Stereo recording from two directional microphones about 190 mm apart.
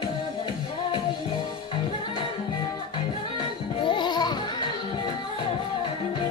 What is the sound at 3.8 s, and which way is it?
Music, 25° left (ahead or behind).